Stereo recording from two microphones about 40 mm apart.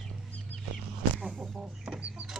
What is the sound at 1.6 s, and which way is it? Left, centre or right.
Chicken, centre.